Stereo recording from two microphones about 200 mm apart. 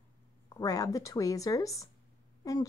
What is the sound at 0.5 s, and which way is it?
Speech, 15° left (ahead or behind).